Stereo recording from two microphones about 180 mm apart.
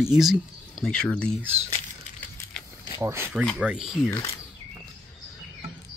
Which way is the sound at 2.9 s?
15° right (ahead or behind).